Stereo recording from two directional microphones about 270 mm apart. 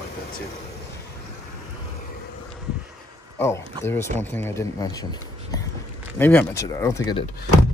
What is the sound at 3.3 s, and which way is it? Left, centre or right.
Speech, centre.